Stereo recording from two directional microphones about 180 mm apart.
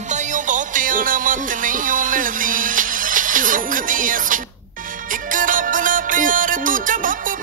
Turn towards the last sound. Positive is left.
turn(degrees=-50)  # may be behind; listen again after turning